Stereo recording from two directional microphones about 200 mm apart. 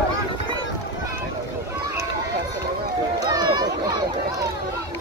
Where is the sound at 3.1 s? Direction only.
20° right (ahead or behind).